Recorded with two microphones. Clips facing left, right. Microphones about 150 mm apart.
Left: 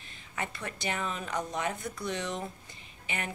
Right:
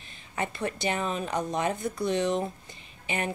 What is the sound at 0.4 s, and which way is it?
Speech, 25° right (ahead or behind).